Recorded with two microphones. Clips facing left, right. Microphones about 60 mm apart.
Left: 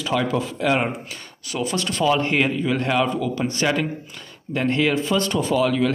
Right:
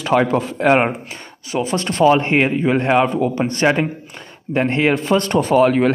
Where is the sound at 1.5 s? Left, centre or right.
Right.